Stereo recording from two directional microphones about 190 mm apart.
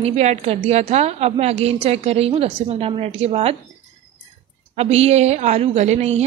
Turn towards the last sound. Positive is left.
turn(degrees=-35)  # may be behind; listen again after turning